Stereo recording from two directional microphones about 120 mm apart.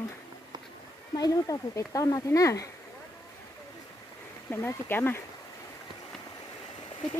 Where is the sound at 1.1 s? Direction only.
30° left (ahead or behind).